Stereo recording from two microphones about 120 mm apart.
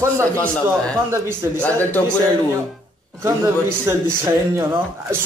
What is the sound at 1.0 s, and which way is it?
Speech, 20° right (ahead or behind).